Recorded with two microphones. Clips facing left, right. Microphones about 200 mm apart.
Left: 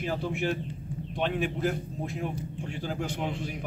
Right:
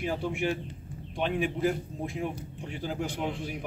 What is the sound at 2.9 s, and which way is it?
Speech, 5° right (ahead or behind).